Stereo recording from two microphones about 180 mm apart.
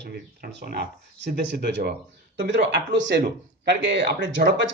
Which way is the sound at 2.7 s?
75° right (ahead or behind).